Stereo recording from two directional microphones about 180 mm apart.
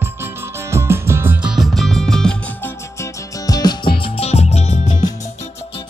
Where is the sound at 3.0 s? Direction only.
20° left (ahead or behind).